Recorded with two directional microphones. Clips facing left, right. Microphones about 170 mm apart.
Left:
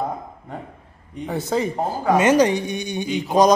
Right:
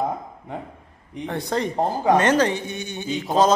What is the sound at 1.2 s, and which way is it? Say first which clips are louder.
Speech: left 2 dB; 5° left (ahead or behind).